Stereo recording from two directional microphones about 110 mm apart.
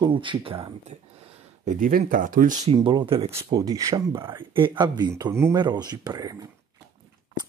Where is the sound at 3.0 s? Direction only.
55° right (ahead or behind).